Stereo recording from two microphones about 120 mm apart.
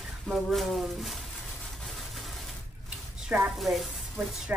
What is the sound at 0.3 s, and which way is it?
Speech, centre (ahead or behind).